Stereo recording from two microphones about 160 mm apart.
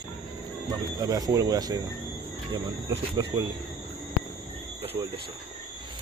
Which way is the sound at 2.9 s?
25° right (ahead or behind).